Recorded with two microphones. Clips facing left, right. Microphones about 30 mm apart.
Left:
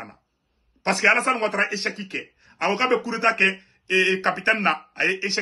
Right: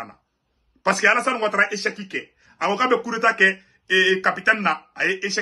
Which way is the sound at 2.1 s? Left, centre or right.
Left.